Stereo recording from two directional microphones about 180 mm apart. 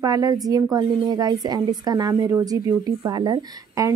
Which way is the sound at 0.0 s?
20° right (ahead or behind).